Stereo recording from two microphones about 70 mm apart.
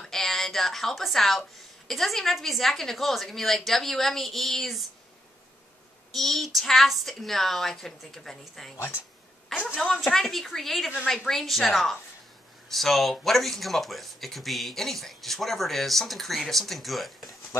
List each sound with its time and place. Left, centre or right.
0.0 s a woman's voice: centre
6.1 s speech: centre
8.7 s speech: left
9.5 s a woman's voice: centre
17.3 s a sound: left